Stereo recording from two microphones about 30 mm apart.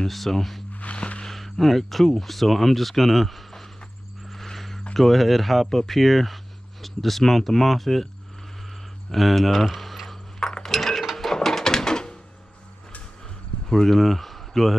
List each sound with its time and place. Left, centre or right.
0.1 s speech: centre
0.9 s a sound: left
1.2 s speech: centre
4.3 s a sound: centre
4.9 s speech: centre
9.1 s speech: centre
10.6 s a sound: centre
11.7 s door: left
13.7 s speech: centre
13.9 s speech: centre